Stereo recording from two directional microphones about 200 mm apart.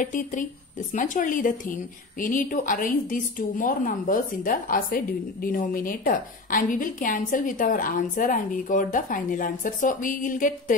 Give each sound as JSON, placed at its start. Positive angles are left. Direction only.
{"t": 0.0, "sound": "a woman's voice", "side_deg": 40}